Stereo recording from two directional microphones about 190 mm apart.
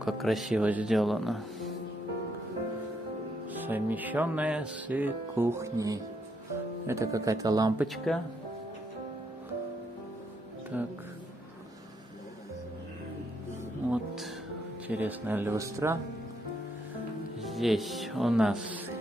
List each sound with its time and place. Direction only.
0.0 s speech: centre (ahead or behind)
3.6 s speech: 10° right (ahead or behind)
7.8 s speech: centre (ahead or behind)
10.7 s speech: 10° right (ahead or behind)
13.8 s music: centre (ahead or behind)
14.9 s speech: 10° right (ahead or behind)
17.4 s speech: centre (ahead or behind)